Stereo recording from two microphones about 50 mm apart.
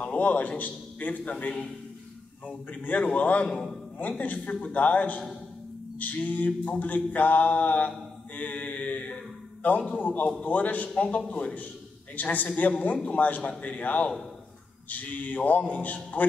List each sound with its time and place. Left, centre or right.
0.2 s music: left
1.3 s a man's voice: left
2.4 s music: left
3.0 s a man's voice: left
4.2 s music: left
8.4 s mantra: left
9.6 s a man's voice: left
9.9 s music: left
11.0 s a man's voice: left
12.2 s music: left
13.5 s a man's voice: left
14.9 s music: left